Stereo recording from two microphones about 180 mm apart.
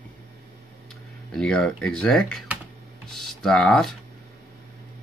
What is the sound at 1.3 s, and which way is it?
Speech, 5° left (ahead or behind).